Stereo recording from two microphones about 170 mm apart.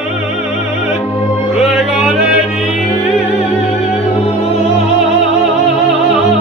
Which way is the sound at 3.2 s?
35° left (ahead or behind).